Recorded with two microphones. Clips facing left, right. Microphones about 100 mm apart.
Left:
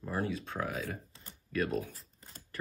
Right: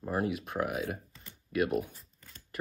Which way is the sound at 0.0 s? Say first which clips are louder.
Right 3 dB; 25° right (ahead or behind).